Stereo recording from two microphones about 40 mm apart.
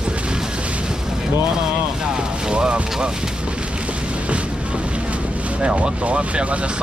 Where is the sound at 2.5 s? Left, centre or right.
Right.